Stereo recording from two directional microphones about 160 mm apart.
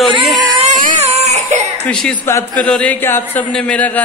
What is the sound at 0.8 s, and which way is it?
Baby cry, 45° right (ahead or behind).